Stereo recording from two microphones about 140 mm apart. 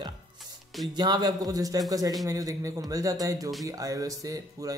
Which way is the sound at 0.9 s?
30° right (ahead or behind).